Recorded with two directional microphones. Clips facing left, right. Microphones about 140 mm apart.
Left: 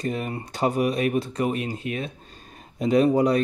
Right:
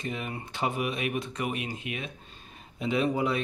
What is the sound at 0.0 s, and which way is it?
Speech, 40° left (ahead or behind).